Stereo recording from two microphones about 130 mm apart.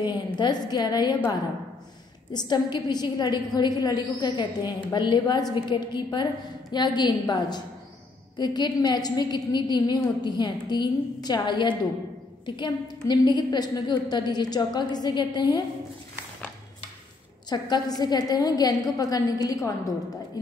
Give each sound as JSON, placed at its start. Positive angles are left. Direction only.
{"t": 0.0, "sound": "a woman's voice", "side_deg": 35}
{"t": 2.3, "sound": "a woman's voice", "side_deg": 35}
{"t": 17.5, "sound": "a woman's voice", "side_deg": 35}